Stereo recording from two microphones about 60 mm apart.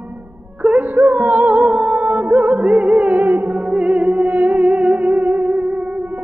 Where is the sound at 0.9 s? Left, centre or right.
Right.